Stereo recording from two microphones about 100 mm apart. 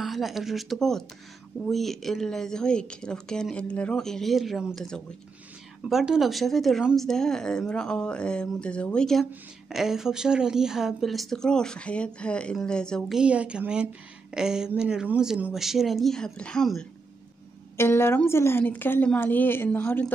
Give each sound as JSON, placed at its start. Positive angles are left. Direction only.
{"t": 0.0, "sound": "a woman's voice", "side_deg": 0}
{"t": 4.7, "sound": "a woman's voice", "side_deg": 5}
{"t": 13.1, "sound": "a woman's voice", "side_deg": -10}
{"t": 17.7, "sound": "a woman's voice", "side_deg": 25}